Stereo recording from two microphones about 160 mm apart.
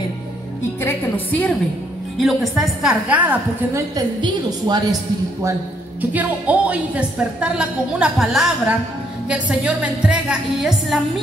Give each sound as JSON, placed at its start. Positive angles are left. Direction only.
{"t": 0.8, "sound": "a woman's voice", "side_deg": 10}
{"t": 2.1, "sound": "a woman's voice", "side_deg": 0}
{"t": 3.9, "sound": "a woman's voice", "side_deg": -25}
{"t": 5.9, "sound": "a woman's voice", "side_deg": -10}